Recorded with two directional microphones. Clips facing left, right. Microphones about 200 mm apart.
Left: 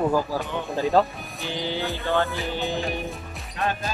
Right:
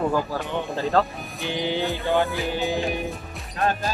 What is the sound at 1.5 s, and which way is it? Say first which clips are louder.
Speech: right 3 dB; 15° right (ahead or behind).